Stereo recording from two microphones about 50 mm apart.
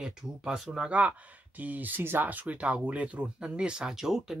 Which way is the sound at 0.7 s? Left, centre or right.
Right.